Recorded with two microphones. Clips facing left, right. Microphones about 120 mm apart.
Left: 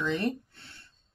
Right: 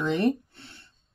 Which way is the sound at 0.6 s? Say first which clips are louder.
Right 4 dB; 25° right (ahead or behind).